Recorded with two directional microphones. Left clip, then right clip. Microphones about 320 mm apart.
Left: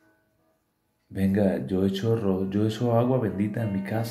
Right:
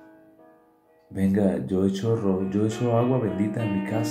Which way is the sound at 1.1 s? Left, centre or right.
Centre.